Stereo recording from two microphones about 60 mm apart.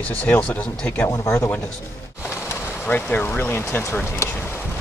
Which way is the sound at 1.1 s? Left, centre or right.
Left.